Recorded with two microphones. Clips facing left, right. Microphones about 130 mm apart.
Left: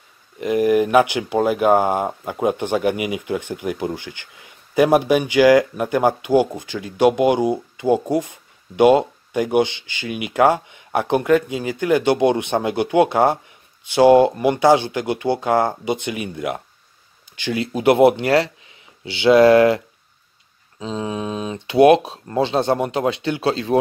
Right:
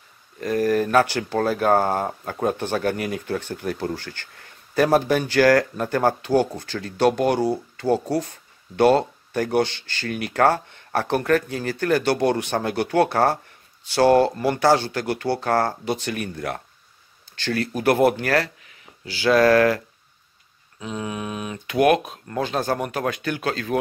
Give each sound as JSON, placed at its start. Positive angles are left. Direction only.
{"t": 0.4, "sound": "speech", "side_deg": 15}
{"t": 20.8, "sound": "speech", "side_deg": 25}